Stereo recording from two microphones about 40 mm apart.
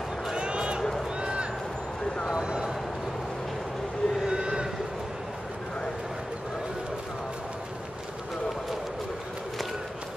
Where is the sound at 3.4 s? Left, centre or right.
Centre.